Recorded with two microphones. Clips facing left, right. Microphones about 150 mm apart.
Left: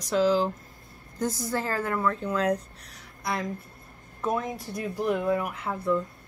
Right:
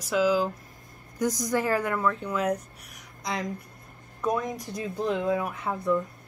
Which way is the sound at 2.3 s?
10° right (ahead or behind).